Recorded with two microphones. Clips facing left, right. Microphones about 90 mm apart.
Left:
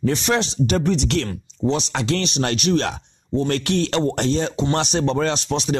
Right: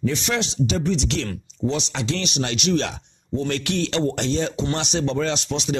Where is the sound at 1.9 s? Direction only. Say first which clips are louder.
Left 4 dB; 50° left (ahead or behind).